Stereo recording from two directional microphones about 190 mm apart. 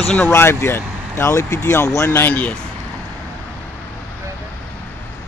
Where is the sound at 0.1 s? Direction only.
10° left (ahead or behind).